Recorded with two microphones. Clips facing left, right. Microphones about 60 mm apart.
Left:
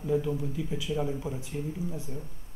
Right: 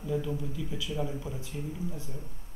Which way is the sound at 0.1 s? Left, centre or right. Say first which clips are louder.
Left 4 dB; left.